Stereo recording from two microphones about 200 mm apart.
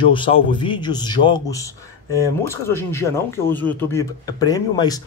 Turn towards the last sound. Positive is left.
turn(degrees=20)  # may be behind; listen again after turning